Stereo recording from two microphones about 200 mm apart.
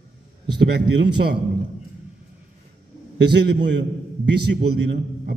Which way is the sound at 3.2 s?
60° right (ahead or behind).